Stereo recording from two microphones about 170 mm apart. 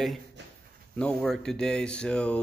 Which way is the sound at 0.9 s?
5° left (ahead or behind).